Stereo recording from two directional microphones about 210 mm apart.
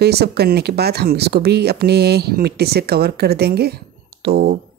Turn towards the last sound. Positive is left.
turn(degrees=-50)  # may be behind; listen again after turning